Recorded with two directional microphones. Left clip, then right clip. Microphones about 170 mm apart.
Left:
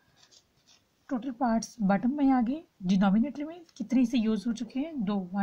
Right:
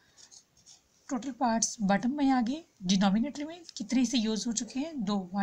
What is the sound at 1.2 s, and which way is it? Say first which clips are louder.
A woman's voice: right 1 dB; 45° left (ahead or behind).